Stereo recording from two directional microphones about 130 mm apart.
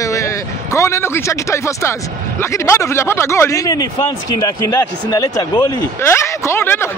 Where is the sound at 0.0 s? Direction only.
25° left (ahead or behind).